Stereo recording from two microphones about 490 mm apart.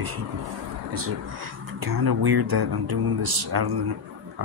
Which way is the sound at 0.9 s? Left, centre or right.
Right.